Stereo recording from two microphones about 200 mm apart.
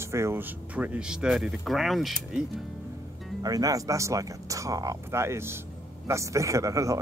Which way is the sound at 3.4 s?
20° right (ahead or behind).